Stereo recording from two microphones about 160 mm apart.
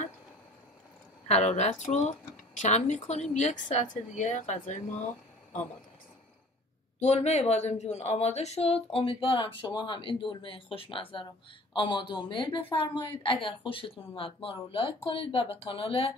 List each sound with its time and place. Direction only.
1.2 s speech: 45° left (ahead or behind)
7.0 s speech: 45° left (ahead or behind)